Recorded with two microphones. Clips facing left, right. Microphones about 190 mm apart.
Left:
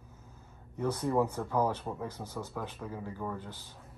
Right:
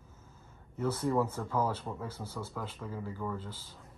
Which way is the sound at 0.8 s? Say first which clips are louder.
Left 1 dB; 15° left (ahead or behind).